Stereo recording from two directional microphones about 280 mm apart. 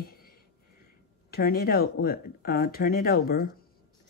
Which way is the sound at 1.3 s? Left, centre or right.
Left.